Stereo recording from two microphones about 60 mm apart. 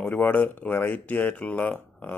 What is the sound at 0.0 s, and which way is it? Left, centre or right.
Speech, left.